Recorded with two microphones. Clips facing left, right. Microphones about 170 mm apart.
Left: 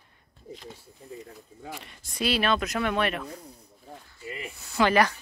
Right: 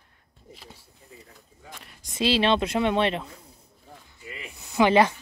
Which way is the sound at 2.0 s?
25° right (ahead or behind).